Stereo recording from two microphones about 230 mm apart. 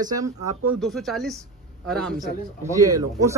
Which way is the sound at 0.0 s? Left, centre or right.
Centre.